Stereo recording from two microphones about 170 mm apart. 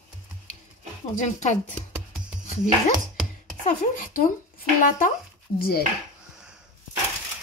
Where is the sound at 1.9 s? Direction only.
5° right (ahead or behind).